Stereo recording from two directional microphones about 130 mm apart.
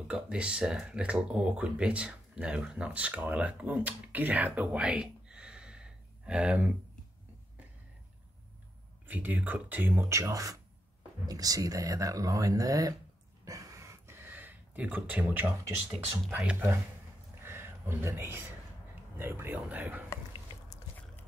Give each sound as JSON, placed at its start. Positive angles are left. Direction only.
{"t": 0.1, "sound": "speech", "side_deg": -10}
{"t": 9.0, "sound": "speech", "side_deg": -15}
{"t": 13.5, "sound": "a sound", "side_deg": -25}
{"t": 15.9, "sound": "speech", "side_deg": -5}
{"t": 17.4, "sound": "a sound", "side_deg": -20}
{"t": 19.1, "sound": "speech", "side_deg": -15}